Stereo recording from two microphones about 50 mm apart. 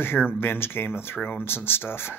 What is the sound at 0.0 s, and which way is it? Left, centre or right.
Speech, left.